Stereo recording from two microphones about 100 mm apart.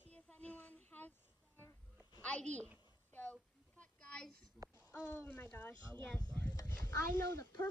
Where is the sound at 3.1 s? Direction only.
15° left (ahead or behind).